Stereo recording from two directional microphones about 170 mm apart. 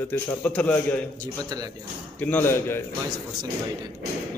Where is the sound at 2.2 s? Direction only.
10° left (ahead or behind).